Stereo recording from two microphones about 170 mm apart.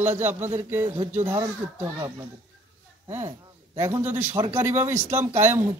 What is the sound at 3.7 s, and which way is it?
A man's voice, 15° right (ahead or behind).